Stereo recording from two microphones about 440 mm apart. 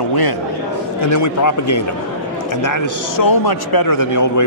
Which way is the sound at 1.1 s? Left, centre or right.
Left.